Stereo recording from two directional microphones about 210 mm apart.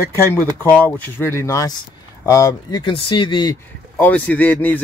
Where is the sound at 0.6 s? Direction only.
10° left (ahead or behind).